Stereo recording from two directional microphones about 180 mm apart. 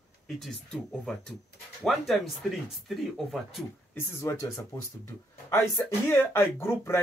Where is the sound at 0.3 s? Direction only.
Centre (ahead or behind).